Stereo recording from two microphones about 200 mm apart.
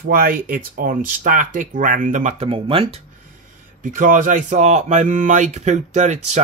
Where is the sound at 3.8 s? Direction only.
40° right (ahead or behind).